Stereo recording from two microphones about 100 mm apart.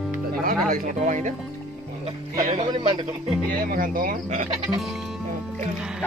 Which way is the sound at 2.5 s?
70° right (ahead or behind).